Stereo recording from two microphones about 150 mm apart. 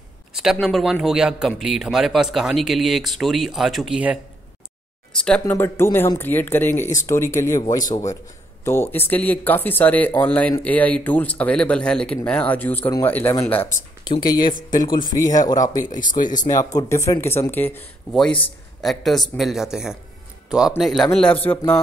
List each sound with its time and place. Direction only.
0.3 s speech: 5° right (ahead or behind)
5.1 s speech: 5° left (ahead or behind); by 8.0 s 25° left (ahead or behind)
8.6 s speech: 15° left (ahead or behind)
14.0 s speech: 30° left (ahead or behind)
16.0 s speech: 60° left (ahead or behind)
16.4 s speech: 25° left (ahead or behind)
18.8 s speech: centre (ahead or behind)